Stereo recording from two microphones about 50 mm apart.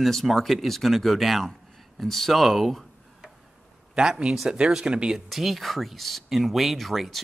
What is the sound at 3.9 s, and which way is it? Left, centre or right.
Speech, centre.